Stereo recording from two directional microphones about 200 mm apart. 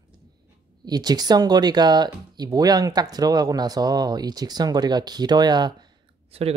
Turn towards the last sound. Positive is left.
turn(degrees=-30)  # may be behind; listen again after turning